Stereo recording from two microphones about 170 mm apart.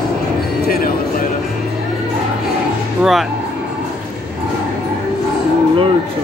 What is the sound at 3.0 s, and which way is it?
Speech, centre (ahead or behind).